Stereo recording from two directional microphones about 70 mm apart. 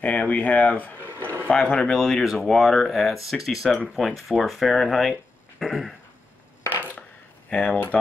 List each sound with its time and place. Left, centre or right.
0.0 s speech: left
1.2 s a sound: right
1.5 s speech: centre
6.6 s chopping: left
7.0 s shuffling cards: centre